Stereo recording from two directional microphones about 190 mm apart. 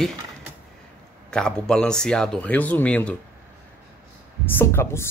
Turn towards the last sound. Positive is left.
turn(degrees=15)  # may be behind; listen again after turning